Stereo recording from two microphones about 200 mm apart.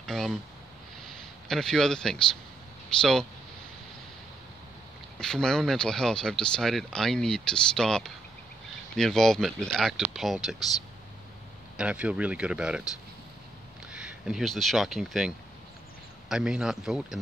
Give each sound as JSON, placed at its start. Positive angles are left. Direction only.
{"t": 0.0, "sound": "speech", "side_deg": 0}
{"t": 1.5, "sound": "speech", "side_deg": 0}
{"t": 5.2, "sound": "speech", "side_deg": 5}
{"t": 11.7, "sound": "speech", "side_deg": -5}
{"t": 13.9, "sound": "speech", "side_deg": -5}